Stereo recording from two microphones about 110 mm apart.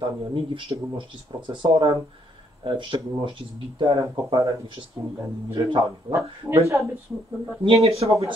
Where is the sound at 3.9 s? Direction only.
30° right (ahead or behind).